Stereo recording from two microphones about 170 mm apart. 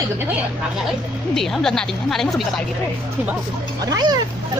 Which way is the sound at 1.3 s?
Centre (ahead or behind).